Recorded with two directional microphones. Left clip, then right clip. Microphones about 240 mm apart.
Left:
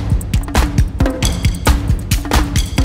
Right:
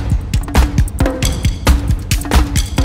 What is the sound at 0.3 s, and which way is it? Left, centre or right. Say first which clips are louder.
Music: even; centre.